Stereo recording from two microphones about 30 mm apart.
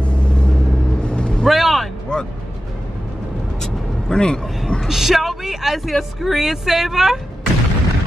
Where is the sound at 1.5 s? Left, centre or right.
Centre.